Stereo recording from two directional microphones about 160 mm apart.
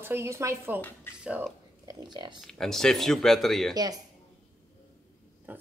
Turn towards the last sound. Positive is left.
turn(degrees=-10)  # may be behind; listen again after turning